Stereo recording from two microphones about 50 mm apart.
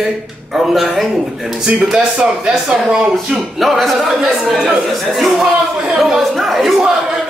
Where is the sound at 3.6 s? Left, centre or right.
Centre.